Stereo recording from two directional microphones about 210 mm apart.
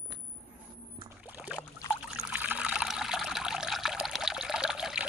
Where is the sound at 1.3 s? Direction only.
5° right (ahead or behind).